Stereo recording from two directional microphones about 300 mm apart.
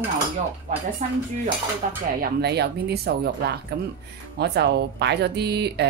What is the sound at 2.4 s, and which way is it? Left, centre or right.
Speech, right.